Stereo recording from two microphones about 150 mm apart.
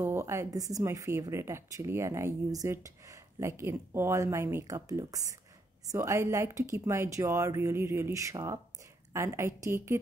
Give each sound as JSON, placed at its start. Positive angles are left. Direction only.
{"t": 0.0, "sound": "a woman's voice", "side_deg": -20}